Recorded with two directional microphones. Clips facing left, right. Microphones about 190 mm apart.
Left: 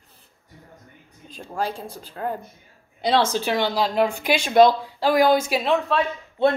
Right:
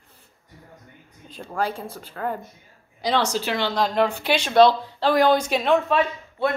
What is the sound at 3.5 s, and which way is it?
Speech, 15° left (ahead or behind).